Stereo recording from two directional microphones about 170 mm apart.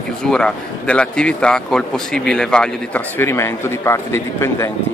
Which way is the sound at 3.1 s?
15° left (ahead or behind).